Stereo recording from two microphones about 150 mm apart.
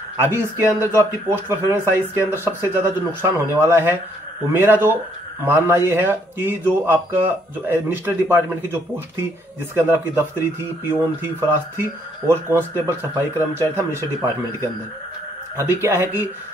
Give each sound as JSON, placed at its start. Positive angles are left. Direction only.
{"t": 0.2, "sound": "speech", "side_deg": -15}
{"t": 15.5, "sound": "speech", "side_deg": -15}